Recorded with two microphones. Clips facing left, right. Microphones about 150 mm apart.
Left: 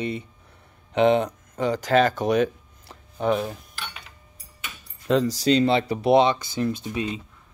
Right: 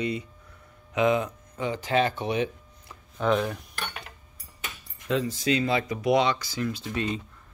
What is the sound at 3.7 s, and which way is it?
Dishes, 55° right (ahead or behind).